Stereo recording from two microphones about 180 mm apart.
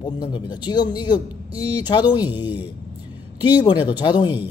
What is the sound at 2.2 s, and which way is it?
Speech, 10° right (ahead or behind).